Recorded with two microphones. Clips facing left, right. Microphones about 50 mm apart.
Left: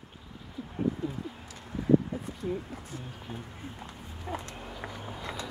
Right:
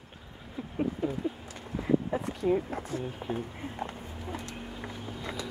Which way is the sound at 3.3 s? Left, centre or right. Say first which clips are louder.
Right 6 dB; right.